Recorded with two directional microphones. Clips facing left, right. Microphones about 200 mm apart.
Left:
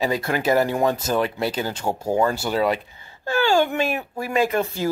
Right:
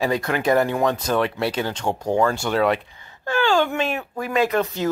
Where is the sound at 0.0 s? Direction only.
25° left (ahead or behind).